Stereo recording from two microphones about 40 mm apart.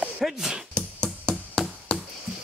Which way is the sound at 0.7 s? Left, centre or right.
Left.